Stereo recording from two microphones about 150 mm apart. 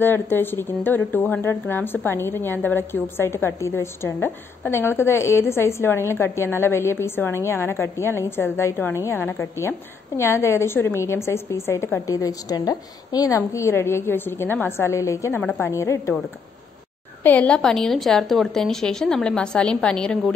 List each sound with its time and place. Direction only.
0.0 s a woman's voice: 15° left (ahead or behind)
17.2 s a woman's voice: 10° left (ahead or behind)